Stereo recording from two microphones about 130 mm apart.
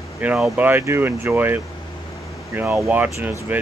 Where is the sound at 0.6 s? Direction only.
15° right (ahead or behind).